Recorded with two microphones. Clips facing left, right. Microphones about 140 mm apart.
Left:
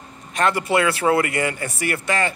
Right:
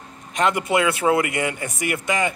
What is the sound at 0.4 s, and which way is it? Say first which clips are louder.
A man's voice: even; 20° right (ahead or behind).